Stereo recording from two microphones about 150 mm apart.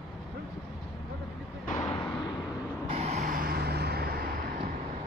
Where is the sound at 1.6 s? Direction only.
45° left (ahead or behind).